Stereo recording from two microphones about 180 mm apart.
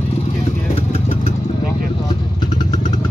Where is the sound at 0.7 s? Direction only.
35° left (ahead or behind).